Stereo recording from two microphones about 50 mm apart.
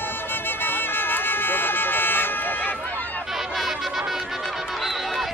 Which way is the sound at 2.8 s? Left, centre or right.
Left.